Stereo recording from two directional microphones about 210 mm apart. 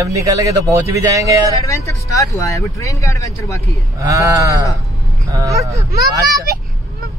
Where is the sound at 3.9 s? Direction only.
15° right (ahead or behind).